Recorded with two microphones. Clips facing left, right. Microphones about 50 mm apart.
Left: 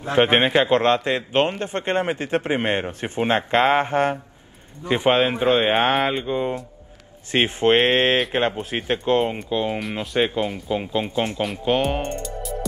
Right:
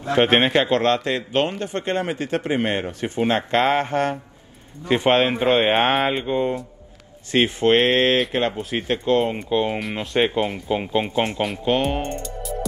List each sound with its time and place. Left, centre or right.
0.2 s a man's voice: centre
0.7 s a man's voice: left
4.8 s speech: centre
7.2 s a man's voice: left
9.5 s speech: centre
11.4 s speech: centre